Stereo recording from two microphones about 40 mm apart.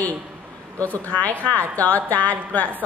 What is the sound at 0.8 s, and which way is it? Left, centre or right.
A woman's voice, left.